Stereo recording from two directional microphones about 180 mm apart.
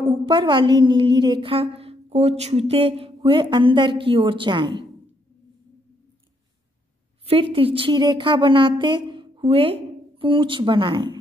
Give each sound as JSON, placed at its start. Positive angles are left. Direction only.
{"t": 0.0, "sound": "a woman's voice", "side_deg": -25}
{"t": 7.2, "sound": "a woman's voice", "side_deg": -30}